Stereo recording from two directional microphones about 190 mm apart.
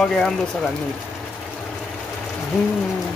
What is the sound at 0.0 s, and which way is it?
Speech, 5° left (ahead or behind).